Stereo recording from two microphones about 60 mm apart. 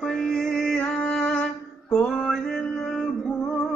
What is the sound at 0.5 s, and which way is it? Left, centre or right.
Music, centre.